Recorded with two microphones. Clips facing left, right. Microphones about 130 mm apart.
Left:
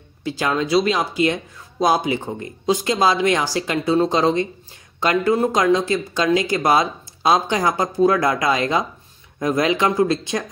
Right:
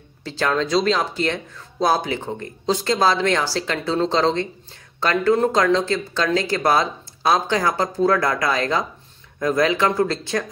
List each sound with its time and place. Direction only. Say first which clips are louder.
0.2 s speech: even; 10° left (ahead or behind)